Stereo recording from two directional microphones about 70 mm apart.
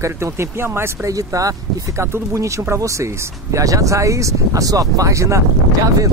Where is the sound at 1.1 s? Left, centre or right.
Right.